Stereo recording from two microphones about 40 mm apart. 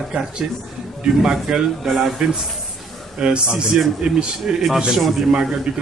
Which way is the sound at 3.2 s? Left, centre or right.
Right.